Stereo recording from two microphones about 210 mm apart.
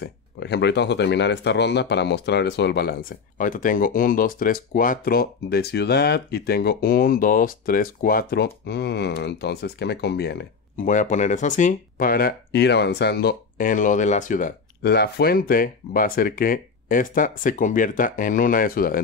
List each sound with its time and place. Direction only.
0.0 s speech: 55° left (ahead or behind)
10.9 s speech: 35° left (ahead or behind)